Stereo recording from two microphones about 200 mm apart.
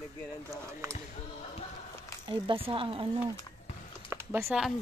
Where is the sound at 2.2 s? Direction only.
25° right (ahead or behind).